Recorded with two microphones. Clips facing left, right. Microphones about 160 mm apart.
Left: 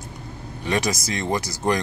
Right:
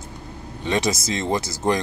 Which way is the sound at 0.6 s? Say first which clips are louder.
Right 1 dB; 25° right (ahead or behind).